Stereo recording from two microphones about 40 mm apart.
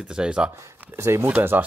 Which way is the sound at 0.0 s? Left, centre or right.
Right.